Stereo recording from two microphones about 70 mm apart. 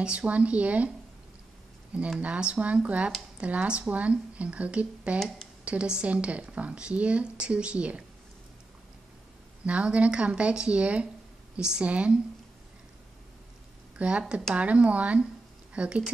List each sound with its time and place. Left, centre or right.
0.0 s speech: centre
2.0 s speech: centre
9.7 s speech: centre
13.9 s speech: centre